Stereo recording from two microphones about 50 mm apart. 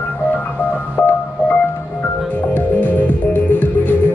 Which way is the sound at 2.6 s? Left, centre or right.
Left.